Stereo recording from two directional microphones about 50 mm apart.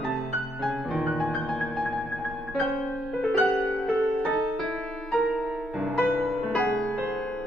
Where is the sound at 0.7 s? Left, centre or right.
Centre.